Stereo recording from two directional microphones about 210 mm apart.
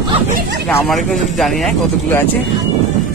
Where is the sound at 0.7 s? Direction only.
Centre (ahead or behind).